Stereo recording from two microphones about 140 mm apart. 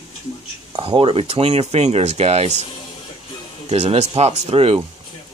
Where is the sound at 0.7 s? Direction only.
40° right (ahead or behind).